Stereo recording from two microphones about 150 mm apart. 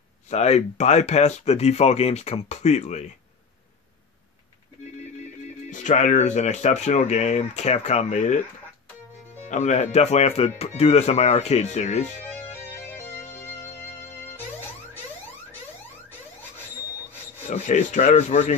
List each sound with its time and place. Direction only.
0.3 s speech: 45° left (ahead or behind)
5.7 s speech: 55° left (ahead or behind)
9.5 s speech: 50° left (ahead or behind)
12.4 s music: 15° left (ahead or behind)
17.5 s speech: 50° left (ahead or behind)